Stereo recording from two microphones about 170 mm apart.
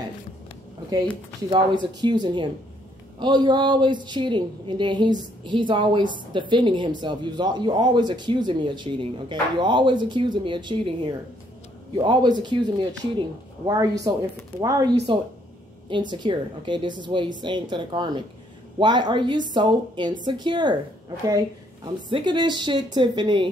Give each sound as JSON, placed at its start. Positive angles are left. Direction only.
{"t": 1.5, "sound": "a woman's voice", "side_deg": -25}
{"t": 21.8, "sound": "a woman's voice", "side_deg": -30}